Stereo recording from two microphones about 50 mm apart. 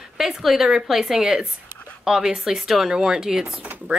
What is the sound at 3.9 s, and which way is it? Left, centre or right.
Speech, right.